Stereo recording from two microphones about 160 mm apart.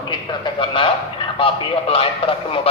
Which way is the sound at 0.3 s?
30° left (ahead or behind).